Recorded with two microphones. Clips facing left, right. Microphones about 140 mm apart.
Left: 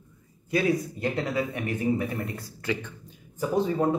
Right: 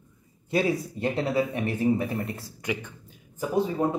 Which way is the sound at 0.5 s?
30° right (ahead or behind).